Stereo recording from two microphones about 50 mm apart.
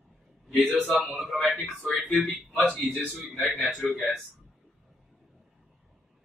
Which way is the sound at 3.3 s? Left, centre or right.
Centre.